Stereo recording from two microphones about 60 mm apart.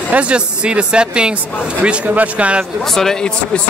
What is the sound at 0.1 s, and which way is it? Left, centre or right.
Speech, centre.